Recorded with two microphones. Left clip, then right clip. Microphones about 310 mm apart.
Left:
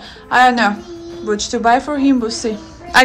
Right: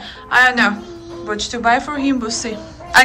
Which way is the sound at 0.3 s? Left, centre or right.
Centre.